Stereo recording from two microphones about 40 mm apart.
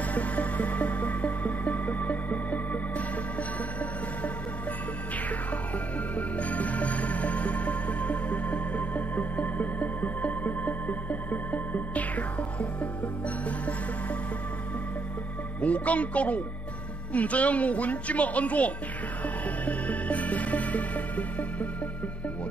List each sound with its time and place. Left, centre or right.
0.1 s music: left
6.1 s music: left
15.6 s a woman's voice: left
19.6 s music: left